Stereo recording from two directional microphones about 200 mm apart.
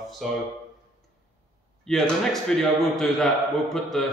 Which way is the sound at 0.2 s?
Centre (ahead or behind).